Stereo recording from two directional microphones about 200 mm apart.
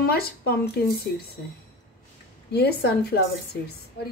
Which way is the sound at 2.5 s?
55° left (ahead or behind).